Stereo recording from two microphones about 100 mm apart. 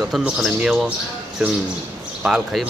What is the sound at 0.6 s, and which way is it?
Speech, 10° right (ahead or behind).